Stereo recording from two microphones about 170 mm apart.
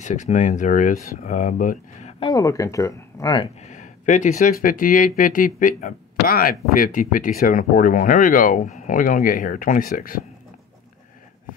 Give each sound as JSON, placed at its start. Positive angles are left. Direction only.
{"t": 0.0, "sound": "speech", "side_deg": 45}
{"t": 2.1, "sound": "speech", "side_deg": 25}
{"t": 3.6, "sound": "speech", "side_deg": 45}